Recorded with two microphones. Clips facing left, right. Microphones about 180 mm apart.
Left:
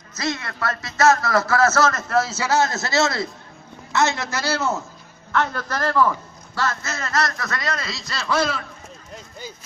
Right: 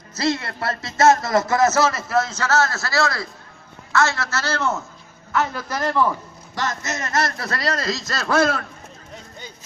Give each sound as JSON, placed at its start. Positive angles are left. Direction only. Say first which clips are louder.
{"t": 0.1, "sound": "a man's voice", "louder": "right 4 dB", "side_deg": -30}
{"t": 5.3, "sound": "a man's voice", "louder": "even", "side_deg": -10}